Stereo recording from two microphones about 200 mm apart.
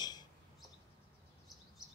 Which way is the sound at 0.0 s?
20° left (ahead or behind).